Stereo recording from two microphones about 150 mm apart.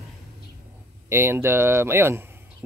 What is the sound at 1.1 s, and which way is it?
Speech, 15° right (ahead or behind).